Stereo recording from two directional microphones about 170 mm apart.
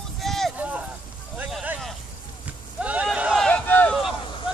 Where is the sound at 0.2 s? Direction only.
Centre (ahead or behind).